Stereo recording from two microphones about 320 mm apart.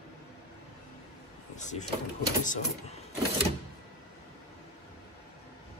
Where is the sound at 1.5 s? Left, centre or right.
Left.